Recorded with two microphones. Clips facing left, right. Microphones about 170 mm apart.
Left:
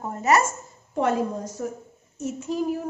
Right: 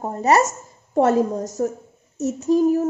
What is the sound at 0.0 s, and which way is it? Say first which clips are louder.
A woman's voice: right 4 dB; 35° right (ahead or behind).